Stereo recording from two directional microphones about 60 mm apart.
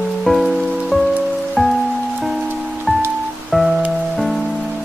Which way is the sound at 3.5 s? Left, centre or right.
Centre.